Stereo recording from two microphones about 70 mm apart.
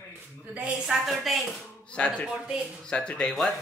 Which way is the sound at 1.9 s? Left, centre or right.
Centre.